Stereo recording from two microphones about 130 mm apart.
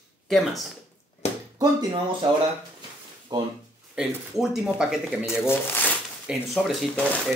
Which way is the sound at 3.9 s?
5° right (ahead or behind).